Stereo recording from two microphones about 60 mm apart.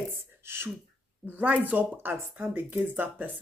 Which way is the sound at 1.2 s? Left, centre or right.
Right.